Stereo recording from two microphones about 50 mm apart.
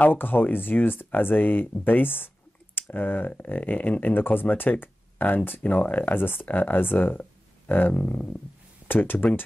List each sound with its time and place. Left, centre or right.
0.0 s speech: left